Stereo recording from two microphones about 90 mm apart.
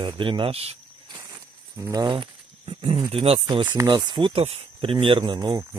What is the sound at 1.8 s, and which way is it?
Speech, 40° right (ahead or behind).